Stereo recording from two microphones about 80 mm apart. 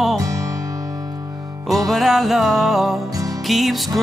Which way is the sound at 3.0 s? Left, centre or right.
Right.